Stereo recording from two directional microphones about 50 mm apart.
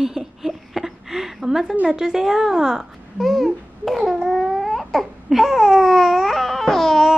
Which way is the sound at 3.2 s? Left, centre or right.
Centre.